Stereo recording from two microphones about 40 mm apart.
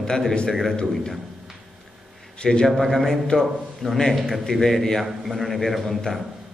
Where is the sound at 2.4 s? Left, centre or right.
Left.